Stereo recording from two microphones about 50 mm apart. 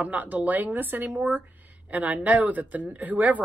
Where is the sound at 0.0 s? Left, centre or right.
Right.